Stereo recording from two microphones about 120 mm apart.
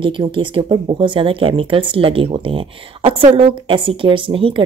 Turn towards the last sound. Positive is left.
turn(degrees=-45)  # may be behind; listen again after turning